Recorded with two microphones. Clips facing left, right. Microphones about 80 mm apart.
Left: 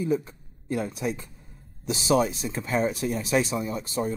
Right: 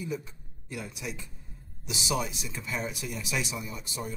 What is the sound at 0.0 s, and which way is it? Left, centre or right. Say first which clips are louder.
Speech: left 9 dB; left.